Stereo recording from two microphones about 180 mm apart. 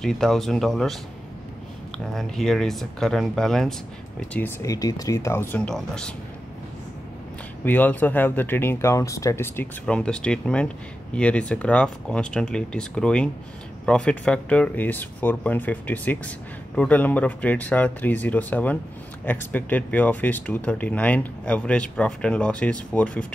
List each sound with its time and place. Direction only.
0.0 s speech: centre (ahead or behind)
2.1 s speech: centre (ahead or behind)
4.3 s speech: 15° left (ahead or behind)
7.6 s speech: 10° left (ahead or behind)